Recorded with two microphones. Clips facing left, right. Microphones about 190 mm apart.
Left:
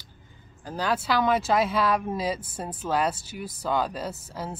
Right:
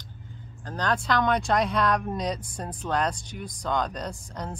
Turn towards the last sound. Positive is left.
turn(degrees=5)  # may be behind; listen again after turning